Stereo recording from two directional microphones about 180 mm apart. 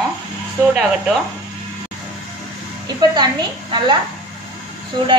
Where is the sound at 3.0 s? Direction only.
25° right (ahead or behind).